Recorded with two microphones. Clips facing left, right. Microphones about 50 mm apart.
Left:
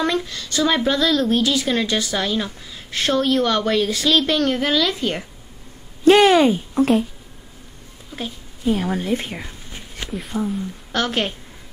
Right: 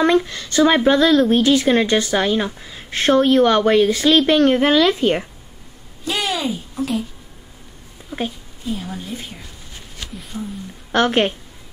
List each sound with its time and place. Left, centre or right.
0.0 s a woman's voice: right
6.0 s speech: left
8.1 s a woman's voice: centre
8.6 s a woman's voice: left
10.9 s a woman's voice: right